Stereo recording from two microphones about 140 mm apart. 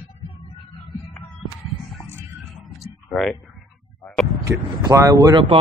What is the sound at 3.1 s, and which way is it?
Speech, centre (ahead or behind).